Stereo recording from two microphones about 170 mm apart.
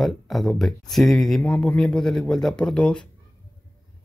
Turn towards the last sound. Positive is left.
turn(degrees=5)  # may be behind; listen again after turning